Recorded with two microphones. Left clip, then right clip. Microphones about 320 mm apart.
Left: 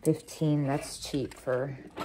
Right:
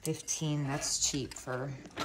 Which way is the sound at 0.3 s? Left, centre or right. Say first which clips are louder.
Left 6 dB; centre.